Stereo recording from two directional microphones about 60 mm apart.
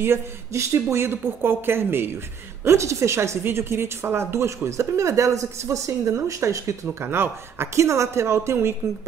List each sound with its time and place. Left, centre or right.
0.0 s a woman's voice: right
2.6 s a woman's voice: right
7.1 s a woman's voice: right